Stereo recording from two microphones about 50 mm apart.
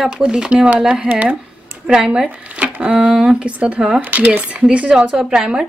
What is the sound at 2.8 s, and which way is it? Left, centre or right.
Speech, right.